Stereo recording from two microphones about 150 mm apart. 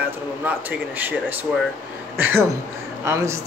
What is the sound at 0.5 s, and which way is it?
Speech, 10° right (ahead or behind).